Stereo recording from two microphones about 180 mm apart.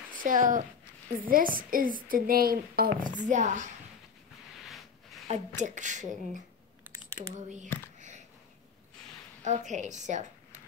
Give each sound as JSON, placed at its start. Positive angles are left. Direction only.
{"t": 0.1, "sound": "speech", "side_deg": -45}
{"t": 5.6, "sound": "speech", "side_deg": -45}
{"t": 6.9, "sound": "typing", "side_deg": -15}
{"t": 7.3, "sound": "speech", "side_deg": -40}
{"t": 9.4, "sound": "a woman's voice", "side_deg": -40}